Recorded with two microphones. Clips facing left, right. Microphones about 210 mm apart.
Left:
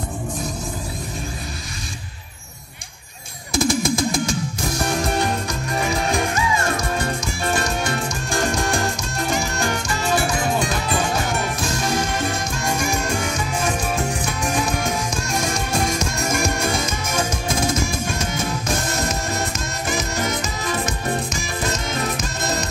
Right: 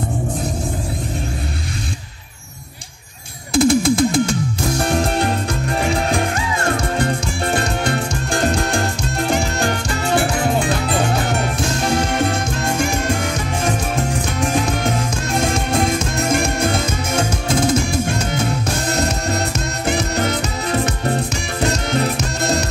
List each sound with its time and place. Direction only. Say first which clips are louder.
3.5 s music: right 6 dB; 65° right (ahead or behind)
7.8 s music: right 4 dB; 60° right (ahead or behind)
11.8 s music: right 5 dB; 60° right (ahead or behind)
16.2 s music: right 5 dB; 60° right (ahead or behind)
18.9 s music: right 4 dB; 65° right (ahead or behind)